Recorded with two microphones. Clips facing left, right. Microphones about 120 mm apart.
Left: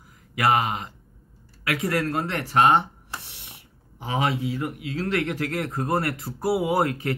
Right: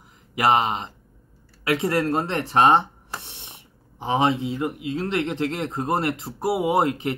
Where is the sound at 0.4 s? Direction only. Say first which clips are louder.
Right 2 dB; 25° right (ahead or behind).